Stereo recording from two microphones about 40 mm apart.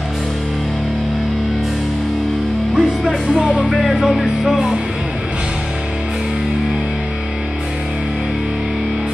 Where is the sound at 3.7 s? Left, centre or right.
Centre.